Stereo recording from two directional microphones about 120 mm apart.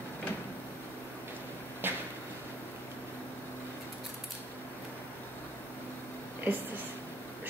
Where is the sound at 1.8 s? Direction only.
15° right (ahead or behind).